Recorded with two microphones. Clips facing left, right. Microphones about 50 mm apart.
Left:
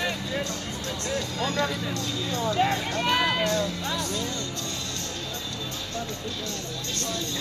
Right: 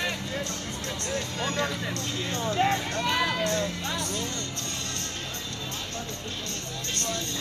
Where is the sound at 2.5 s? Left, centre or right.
Left.